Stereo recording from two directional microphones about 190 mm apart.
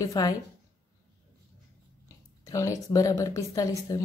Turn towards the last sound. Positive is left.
turn(degrees=15)  # may be behind; listen again after turning